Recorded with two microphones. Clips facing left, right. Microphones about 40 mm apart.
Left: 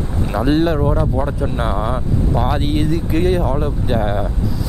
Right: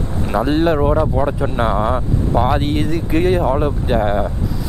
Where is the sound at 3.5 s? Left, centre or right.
Centre.